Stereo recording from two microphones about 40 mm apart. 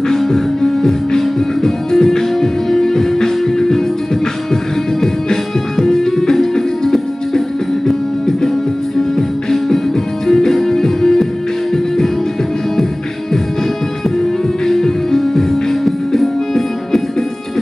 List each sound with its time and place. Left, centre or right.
0.1 s music: centre
5.0 s music: centre
10.2 s music: centre
14.7 s music: centre